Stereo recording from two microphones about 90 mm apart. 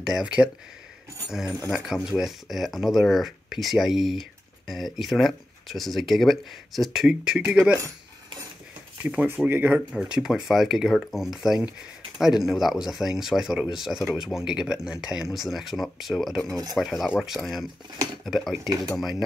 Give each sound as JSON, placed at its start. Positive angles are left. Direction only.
{"t": 0.0, "sound": "speech", "side_deg": -5}
{"t": 2.0, "sound": "speech", "side_deg": -5}
{"t": 9.0, "sound": "speech", "side_deg": -10}
{"t": 9.3, "sound": "speech", "side_deg": -20}
{"t": 9.8, "sound": "speech", "side_deg": -10}